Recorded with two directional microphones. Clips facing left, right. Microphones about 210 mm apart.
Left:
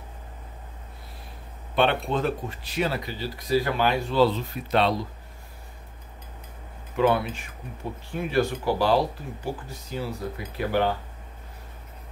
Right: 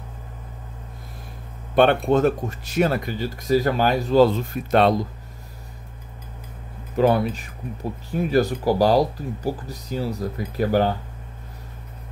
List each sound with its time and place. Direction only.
1.8 s speech: 45° right (ahead or behind)
7.0 s speech: 40° right (ahead or behind)